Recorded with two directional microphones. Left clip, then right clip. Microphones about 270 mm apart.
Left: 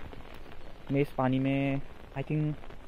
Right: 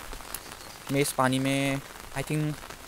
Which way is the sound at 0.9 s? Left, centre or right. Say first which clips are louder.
Right 4 dB; centre.